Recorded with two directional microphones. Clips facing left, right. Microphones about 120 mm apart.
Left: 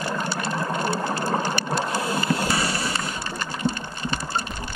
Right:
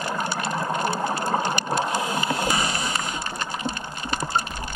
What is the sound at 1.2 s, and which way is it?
Sewing machine, 20° right (ahead or behind).